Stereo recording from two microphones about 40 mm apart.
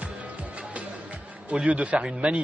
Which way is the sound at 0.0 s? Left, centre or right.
Right.